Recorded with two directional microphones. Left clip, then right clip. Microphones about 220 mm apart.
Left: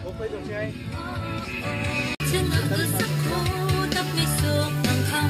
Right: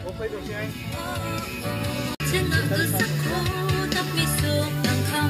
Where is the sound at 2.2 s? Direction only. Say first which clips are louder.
Right 1 dB; 5° right (ahead or behind).